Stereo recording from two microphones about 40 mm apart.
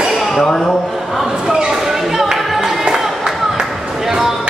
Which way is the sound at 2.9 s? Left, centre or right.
Centre.